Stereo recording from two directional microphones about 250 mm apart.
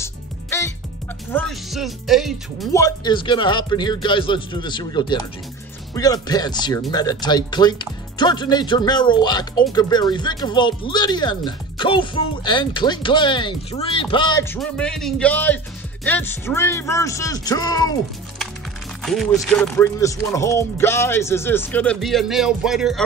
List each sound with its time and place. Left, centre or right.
0.0 s music: centre
1.3 s speech: centre
2.7 s speech: centre
19.4 s speech: centre